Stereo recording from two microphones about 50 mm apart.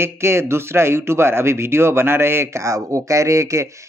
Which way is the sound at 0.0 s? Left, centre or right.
Right.